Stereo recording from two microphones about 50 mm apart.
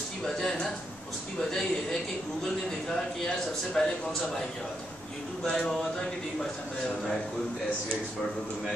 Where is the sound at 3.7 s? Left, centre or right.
Centre.